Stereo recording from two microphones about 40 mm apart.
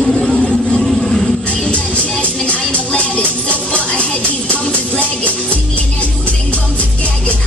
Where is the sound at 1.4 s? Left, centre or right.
Left.